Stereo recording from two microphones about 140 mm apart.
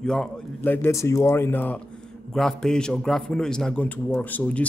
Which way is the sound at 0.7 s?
15° left (ahead or behind).